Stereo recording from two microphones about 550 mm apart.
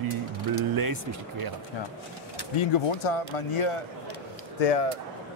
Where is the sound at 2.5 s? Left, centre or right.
Left.